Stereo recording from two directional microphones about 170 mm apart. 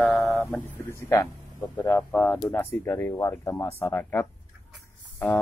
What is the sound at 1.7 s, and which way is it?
Speech, 10° left (ahead or behind).